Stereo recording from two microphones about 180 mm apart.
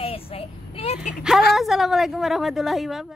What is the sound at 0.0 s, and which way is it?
Child singing, 30° left (ahead or behind).